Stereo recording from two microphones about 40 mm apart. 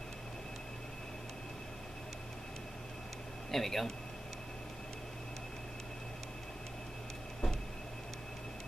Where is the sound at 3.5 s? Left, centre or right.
Centre.